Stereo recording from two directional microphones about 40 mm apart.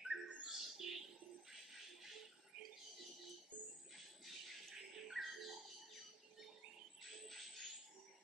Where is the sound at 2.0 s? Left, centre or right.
Centre.